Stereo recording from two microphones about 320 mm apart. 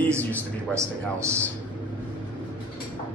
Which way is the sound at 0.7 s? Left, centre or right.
Centre.